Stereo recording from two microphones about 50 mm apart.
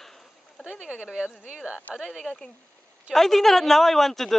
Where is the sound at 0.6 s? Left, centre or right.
Centre.